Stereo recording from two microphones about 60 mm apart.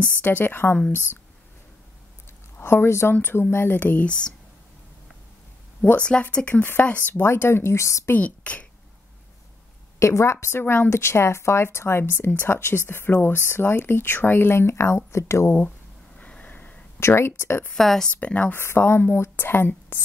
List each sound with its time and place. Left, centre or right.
0.2 s speech: left
2.6 s speech: left
5.9 s a woman's voice: centre
7.2 s speech: left
8.2 s a woman's voice: left
9.9 s speech: left
10.6 s speech: left
10.9 s speech: left
16.2 s a sound: left
17.0 s speech: left
17.7 s speech: centre
18.1 s a woman's voice: left
18.5 s a woman's voice: left